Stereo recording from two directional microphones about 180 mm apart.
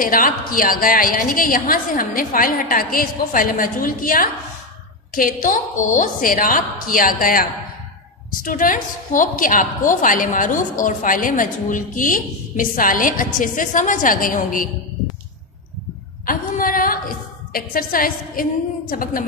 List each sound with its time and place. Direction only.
0.0 s a woman's voice: 50° left (ahead or behind)
16.3 s a sound: 50° left (ahead or behind)
17.5 s a woman's voice: 55° left (ahead or behind)